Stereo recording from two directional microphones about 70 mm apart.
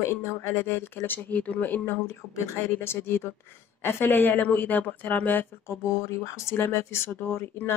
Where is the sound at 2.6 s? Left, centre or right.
Left.